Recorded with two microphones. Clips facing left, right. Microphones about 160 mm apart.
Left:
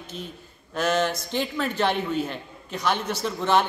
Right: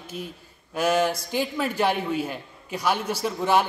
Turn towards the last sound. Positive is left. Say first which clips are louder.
# even
turn(degrees=-10)  # may be behind; listen again after turning